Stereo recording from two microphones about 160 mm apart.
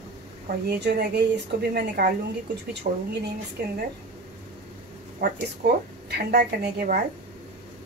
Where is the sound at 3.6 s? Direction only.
75° right (ahead or behind).